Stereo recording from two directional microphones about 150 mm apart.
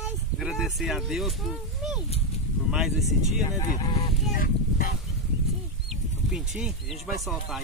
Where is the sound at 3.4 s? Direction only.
25° left (ahead or behind).